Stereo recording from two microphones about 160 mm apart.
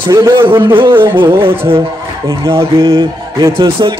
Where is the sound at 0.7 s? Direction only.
30° right (ahead or behind).